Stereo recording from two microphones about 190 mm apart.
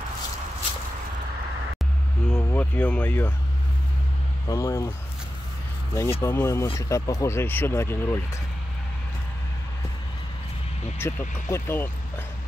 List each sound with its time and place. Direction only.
2.2 s speech: 5° left (ahead or behind)
4.5 s speech: 20° left (ahead or behind)
6.2 s speech: 15° left (ahead or behind)
11.0 s speech: 10° left (ahead or behind)